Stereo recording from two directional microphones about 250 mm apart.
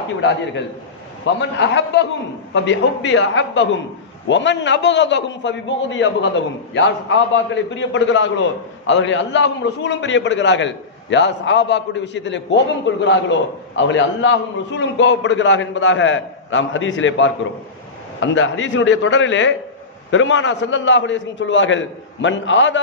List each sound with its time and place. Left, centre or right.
1.2 s a man's voice: left